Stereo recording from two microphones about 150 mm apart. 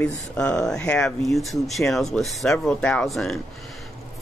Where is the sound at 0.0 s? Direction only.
5° left (ahead or behind).